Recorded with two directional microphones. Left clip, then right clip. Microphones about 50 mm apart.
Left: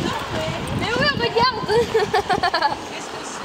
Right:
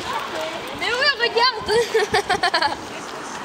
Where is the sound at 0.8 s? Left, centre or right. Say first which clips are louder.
Right 1 dB; centre.